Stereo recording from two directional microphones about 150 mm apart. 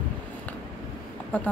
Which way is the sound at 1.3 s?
10° left (ahead or behind).